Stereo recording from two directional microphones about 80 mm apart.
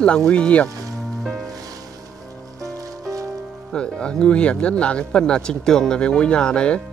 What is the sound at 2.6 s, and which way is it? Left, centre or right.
Music, right.